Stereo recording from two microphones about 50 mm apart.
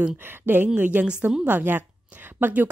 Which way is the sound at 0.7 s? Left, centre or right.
Right.